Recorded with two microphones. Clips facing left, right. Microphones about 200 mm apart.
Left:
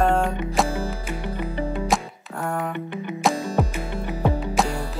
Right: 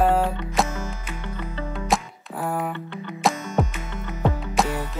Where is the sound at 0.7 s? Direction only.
35° left (ahead or behind).